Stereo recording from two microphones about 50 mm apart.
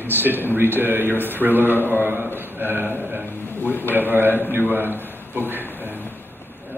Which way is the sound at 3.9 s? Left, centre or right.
Right.